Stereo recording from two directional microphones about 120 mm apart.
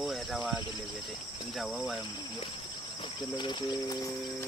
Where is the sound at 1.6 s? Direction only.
Centre (ahead or behind).